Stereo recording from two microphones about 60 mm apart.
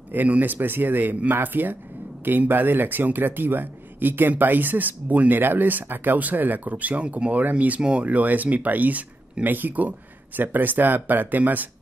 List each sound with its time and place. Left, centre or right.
0.1 s speech: right